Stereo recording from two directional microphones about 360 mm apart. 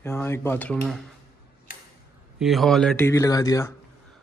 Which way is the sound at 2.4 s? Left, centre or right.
Centre.